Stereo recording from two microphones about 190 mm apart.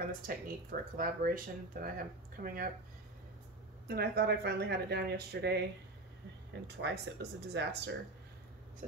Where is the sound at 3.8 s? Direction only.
55° right (ahead or behind).